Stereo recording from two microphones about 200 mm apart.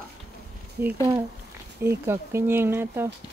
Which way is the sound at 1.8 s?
10° right (ahead or behind).